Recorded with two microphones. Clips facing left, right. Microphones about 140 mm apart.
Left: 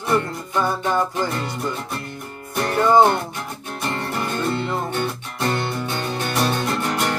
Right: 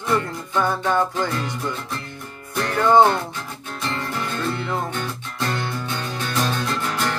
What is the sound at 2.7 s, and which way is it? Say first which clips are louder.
Music: even; 10° left (ahead or behind).